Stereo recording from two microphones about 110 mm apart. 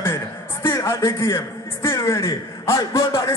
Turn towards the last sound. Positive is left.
turn(degrees=30)  # may be behind; listen again after turning